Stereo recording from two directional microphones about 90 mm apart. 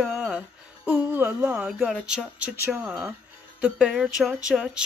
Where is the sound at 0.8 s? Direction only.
15° right (ahead or behind).